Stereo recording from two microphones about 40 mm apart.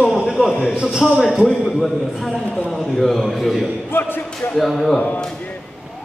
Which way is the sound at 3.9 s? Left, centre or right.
Left.